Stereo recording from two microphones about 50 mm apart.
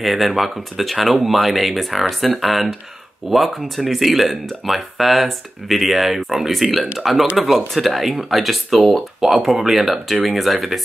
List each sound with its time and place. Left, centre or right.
0.0 s speech: centre